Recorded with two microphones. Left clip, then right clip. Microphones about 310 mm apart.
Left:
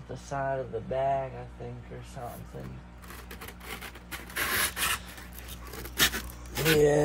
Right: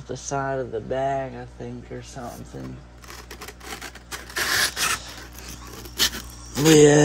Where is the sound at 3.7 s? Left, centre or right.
Right.